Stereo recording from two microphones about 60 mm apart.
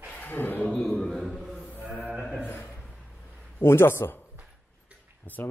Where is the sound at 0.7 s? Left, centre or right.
Centre.